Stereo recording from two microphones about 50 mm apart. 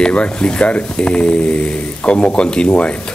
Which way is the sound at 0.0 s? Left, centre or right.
Left.